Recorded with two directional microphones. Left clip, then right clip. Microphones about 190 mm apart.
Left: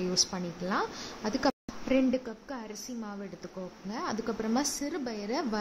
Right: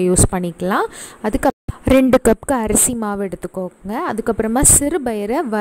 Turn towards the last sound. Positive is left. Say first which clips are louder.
# right 14 dB
turn(degrees=-45)  # may be behind; listen again after turning